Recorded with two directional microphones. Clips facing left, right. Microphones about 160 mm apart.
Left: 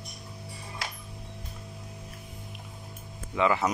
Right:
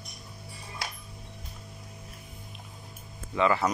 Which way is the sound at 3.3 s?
15° left (ahead or behind).